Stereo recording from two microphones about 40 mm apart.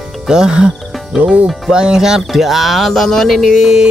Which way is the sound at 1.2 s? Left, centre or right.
Right.